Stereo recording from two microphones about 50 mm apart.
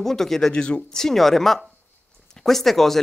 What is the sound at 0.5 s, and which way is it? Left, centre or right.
Speech, centre.